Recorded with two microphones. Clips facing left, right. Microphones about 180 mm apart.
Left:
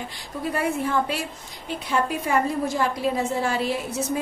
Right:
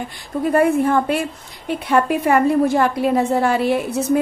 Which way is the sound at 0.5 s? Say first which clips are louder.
Right 9 dB; 55° right (ahead or behind).